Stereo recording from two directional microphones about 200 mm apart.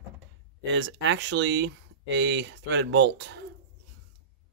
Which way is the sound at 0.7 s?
65° right (ahead or behind).